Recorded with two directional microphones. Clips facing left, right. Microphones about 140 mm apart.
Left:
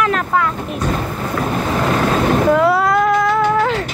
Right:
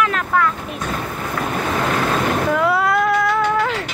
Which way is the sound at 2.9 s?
25° left (ahead or behind).